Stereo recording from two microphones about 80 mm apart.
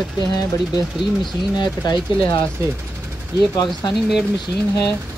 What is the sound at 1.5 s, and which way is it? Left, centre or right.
Speech, left.